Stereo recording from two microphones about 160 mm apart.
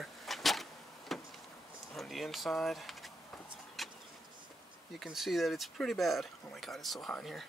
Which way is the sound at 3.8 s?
Centre (ahead or behind).